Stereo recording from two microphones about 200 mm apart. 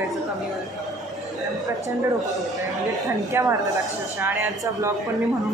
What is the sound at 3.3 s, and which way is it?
Speech, 10° right (ahead or behind).